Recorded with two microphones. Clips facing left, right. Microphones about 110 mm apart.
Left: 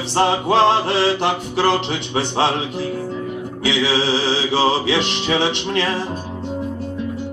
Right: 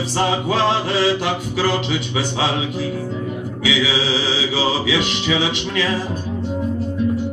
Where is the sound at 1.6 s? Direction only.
50° left (ahead or behind).